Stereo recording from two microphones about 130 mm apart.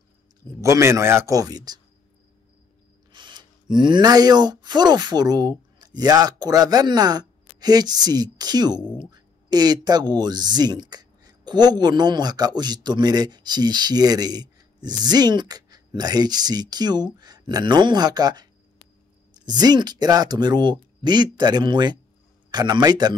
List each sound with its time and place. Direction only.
0.6 s a man's voice: 20° right (ahead or behind)
3.1 s speech: 35° right (ahead or behind)